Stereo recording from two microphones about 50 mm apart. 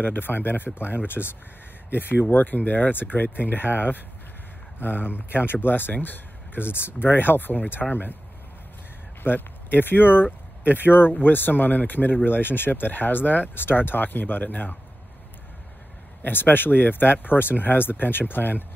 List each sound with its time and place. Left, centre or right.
0.0 s speech: left
3.6 s speech: right
4.7 s speech: left
5.1 s speech: right
5.5 s speech: left
9.2 s speech: left
10.6 s speech: right
10.9 s speech: left
16.2 s speech: left